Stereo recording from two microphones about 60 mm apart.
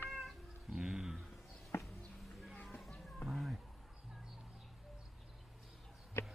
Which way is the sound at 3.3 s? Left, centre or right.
Centre.